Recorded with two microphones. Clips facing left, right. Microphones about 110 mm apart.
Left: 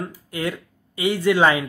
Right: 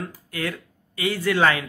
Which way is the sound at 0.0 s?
25° left (ahead or behind).